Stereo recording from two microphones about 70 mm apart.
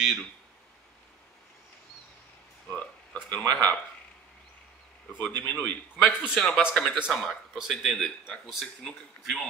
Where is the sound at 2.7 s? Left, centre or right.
Centre.